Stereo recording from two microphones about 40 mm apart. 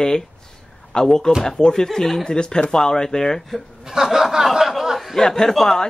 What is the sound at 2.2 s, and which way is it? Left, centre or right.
Speech, centre.